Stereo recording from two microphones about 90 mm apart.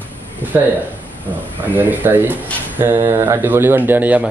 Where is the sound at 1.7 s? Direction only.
20° right (ahead or behind).